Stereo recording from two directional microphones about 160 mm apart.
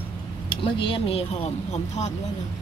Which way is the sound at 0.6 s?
35° left (ahead or behind).